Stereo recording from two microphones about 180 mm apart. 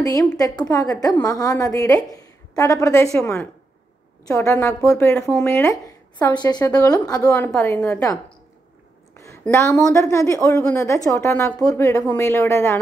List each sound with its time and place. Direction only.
0.0 s a woman's voice: 20° left (ahead or behind)
9.1 s a sound: 15° left (ahead or behind)
9.4 s a woman's voice: 15° left (ahead or behind)